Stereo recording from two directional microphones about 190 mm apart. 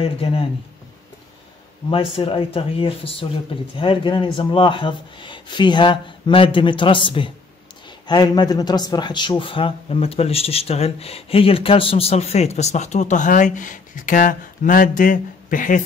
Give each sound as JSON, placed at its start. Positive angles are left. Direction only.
{"t": 0.0, "sound": "speech", "side_deg": 30}
{"t": 1.9, "sound": "speech", "side_deg": 30}